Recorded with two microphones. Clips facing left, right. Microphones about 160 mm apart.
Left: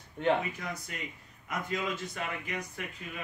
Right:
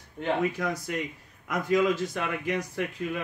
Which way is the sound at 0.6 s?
90° right.